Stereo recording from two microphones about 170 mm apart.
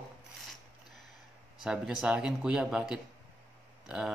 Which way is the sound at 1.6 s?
5° right (ahead or behind).